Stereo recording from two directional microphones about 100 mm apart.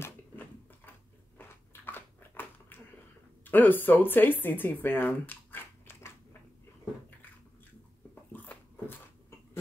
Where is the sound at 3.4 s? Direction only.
20° left (ahead or behind).